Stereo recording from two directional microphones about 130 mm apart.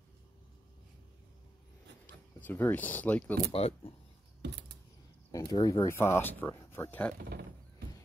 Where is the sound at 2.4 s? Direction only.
15° left (ahead or behind).